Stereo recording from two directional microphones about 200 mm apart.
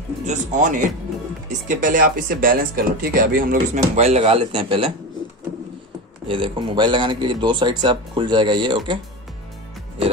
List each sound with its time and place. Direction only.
0.3 s speech: 35° right (ahead or behind)
6.2 s speech: 25° right (ahead or behind)